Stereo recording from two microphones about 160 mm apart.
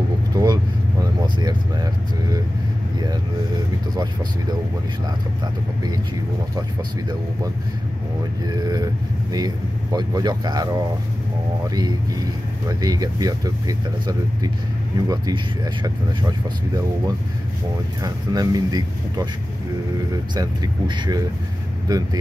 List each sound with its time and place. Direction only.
0.3 s vehicle: 20° right (ahead or behind)
8.5 s speech: 25° right (ahead or behind)
9.9 s speech: 25° right (ahead or behind)
20.3 s speech: 25° right (ahead or behind)